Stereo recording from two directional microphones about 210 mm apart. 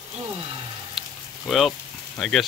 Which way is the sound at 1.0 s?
Centre (ahead or behind).